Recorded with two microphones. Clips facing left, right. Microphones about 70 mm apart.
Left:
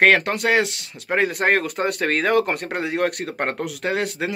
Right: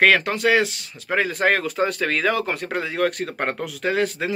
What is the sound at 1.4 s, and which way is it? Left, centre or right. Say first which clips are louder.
Speech: even; left.